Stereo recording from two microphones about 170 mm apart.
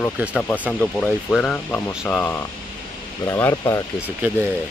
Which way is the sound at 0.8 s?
5° left (ahead or behind).